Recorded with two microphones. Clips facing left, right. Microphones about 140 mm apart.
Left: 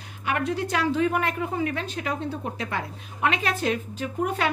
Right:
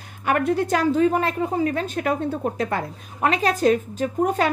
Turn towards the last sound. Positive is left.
turn(degrees=-40)  # may be behind; listen again after turning